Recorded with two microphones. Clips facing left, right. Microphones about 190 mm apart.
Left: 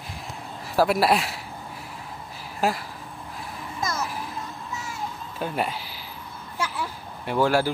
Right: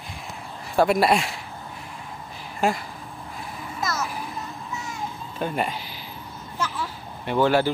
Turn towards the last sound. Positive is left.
turn(degrees=5)  # may be behind; listen again after turning